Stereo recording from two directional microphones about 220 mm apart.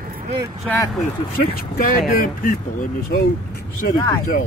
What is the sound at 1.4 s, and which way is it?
Speech, 40° left (ahead or behind).